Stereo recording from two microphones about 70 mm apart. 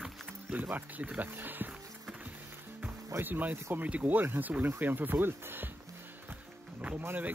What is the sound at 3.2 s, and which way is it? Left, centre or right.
Speech, right.